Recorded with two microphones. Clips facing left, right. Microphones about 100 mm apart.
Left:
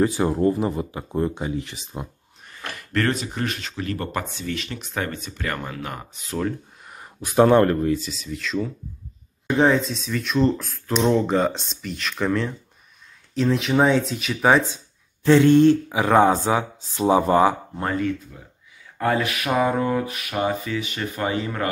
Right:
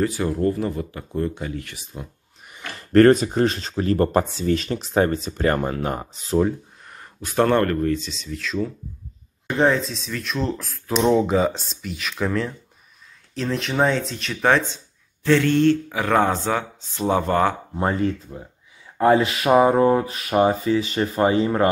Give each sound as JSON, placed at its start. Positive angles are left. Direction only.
{"t": 0.0, "sound": "speech", "side_deg": 25}
{"t": 2.5, "sound": "speech", "side_deg": -30}
{"t": 6.9, "sound": "speech", "side_deg": 10}
{"t": 15.2, "sound": "speech", "side_deg": 15}
{"t": 17.7, "sound": "speech", "side_deg": -25}